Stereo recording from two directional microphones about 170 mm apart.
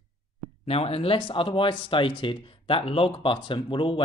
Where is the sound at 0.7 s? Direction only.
35° left (ahead or behind).